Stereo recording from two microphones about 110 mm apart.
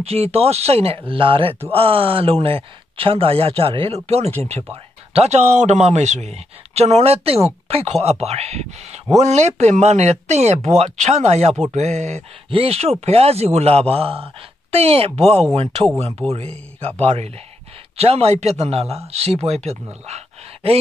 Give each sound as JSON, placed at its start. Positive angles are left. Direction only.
{"t": 0.0, "sound": "a man's voice", "side_deg": -65}
{"t": 9.2, "sound": "speech", "side_deg": -85}
{"t": 11.7, "sound": "speech", "side_deg": -90}
{"t": 12.4, "sound": "a man's voice", "side_deg": -60}